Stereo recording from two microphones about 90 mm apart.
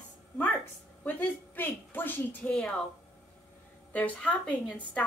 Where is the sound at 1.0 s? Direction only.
20° left (ahead or behind).